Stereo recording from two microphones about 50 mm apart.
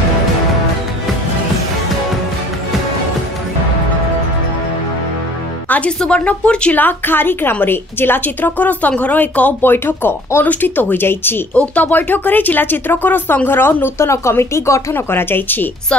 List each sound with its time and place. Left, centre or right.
5.9 s speech: left
6.7 s a woman's voice: left
9.6 s a woman's voice: left
11.5 s speech: left
11.8 s a woman's voice: left
15.0 s a woman's voice: left